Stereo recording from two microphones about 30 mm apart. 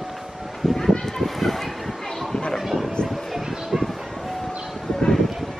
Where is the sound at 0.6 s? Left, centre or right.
Centre.